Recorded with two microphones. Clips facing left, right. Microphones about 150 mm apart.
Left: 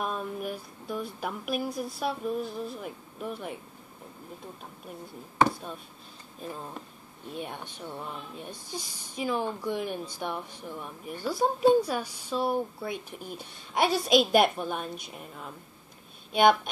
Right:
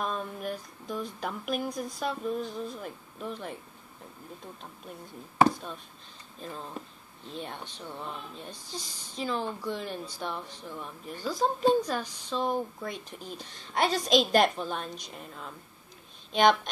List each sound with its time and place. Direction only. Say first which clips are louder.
0.0 s speech: left 1 dB; 10° left (ahead or behind)
6.4 s a woman's voice: left 1 dB; 10° left (ahead or behind)